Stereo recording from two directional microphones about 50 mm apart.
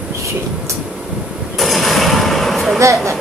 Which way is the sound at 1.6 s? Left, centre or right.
Centre.